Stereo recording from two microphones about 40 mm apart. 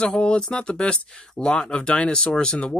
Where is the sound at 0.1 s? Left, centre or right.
Left.